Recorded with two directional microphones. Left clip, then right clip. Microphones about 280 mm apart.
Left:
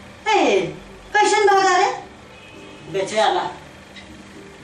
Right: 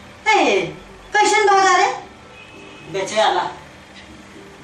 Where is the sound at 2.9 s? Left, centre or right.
Centre.